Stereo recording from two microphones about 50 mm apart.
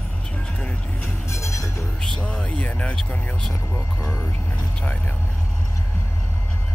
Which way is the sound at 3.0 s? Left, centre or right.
Left.